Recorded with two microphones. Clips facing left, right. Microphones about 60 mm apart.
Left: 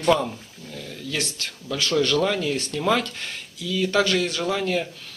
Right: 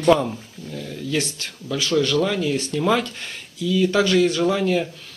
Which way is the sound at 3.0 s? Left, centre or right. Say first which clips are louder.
Right 1 dB; right.